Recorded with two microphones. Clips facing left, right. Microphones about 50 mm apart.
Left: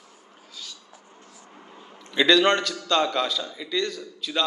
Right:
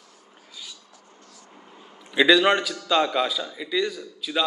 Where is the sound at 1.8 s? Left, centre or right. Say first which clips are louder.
Right 2 dB; centre.